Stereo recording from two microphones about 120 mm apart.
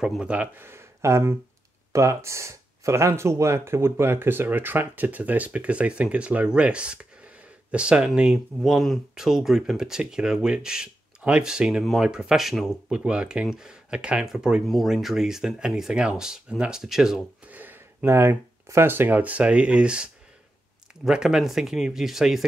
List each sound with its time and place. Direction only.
0.0 s speech: 5° right (ahead or behind)
17.6 s speech: 20° right (ahead or behind)